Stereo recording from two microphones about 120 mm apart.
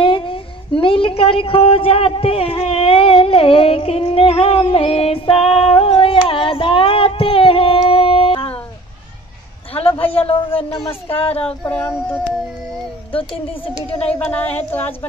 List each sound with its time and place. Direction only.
0.0 s a sound: 45° left (ahead or behind)
9.8 s a woman's voice: 50° left (ahead or behind)
13.1 s a woman's voice: 50° left (ahead or behind)
14.3 s speech: 15° left (ahead or behind)